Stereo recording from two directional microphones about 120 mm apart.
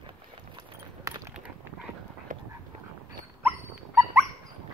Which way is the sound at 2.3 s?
90° right.